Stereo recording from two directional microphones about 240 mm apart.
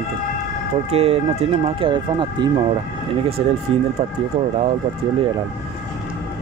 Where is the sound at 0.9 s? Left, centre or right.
Right.